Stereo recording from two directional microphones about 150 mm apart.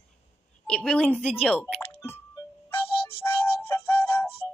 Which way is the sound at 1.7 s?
10° right (ahead or behind).